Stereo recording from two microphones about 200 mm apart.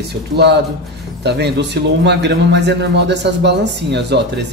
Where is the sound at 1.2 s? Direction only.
55° right (ahead or behind).